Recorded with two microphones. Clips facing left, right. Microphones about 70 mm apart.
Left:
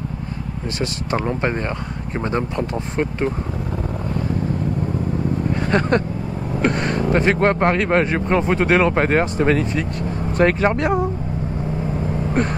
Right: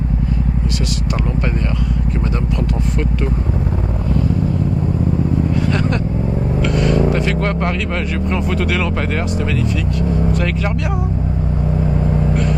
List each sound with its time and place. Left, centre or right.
5.5 s vehicle: left
6.6 s speech: left